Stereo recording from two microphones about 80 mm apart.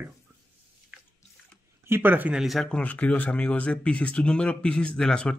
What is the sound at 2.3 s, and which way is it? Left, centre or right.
Speech, centre.